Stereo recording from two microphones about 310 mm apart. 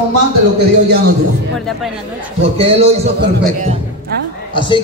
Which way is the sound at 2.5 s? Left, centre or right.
Centre.